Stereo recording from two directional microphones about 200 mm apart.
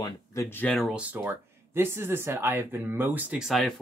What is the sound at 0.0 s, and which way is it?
Speech, 15° left (ahead or behind).